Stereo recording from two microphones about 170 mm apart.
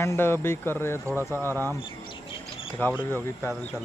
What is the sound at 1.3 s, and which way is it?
Speech, 15° right (ahead or behind).